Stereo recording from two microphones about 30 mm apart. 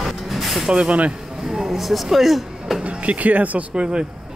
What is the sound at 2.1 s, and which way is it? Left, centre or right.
Speech, centre.